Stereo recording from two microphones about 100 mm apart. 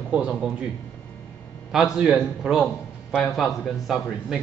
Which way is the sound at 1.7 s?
5° right (ahead or behind).